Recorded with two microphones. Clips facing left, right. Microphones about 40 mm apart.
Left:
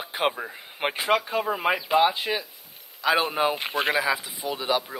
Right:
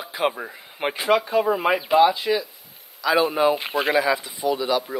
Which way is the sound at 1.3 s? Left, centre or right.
Centre.